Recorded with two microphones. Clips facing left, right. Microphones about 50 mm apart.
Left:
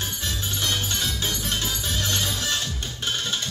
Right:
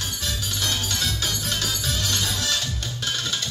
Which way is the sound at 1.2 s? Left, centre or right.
Left.